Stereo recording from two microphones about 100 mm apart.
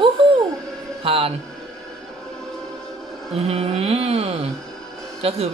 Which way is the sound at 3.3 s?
90° right.